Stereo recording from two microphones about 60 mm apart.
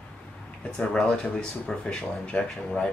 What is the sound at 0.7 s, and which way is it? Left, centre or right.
Speech, centre.